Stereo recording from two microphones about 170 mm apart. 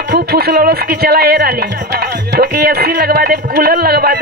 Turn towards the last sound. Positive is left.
turn(degrees=-65)  # may be behind; listen again after turning